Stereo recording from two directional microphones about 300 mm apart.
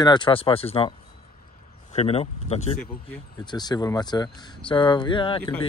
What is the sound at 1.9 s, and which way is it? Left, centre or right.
Speech, centre.